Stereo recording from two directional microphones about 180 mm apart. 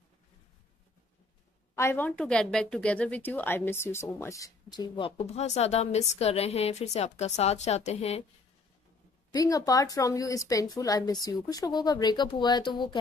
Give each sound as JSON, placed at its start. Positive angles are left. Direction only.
{"t": 1.8, "sound": "a woman's voice", "side_deg": 10}
{"t": 9.3, "sound": "speech", "side_deg": 20}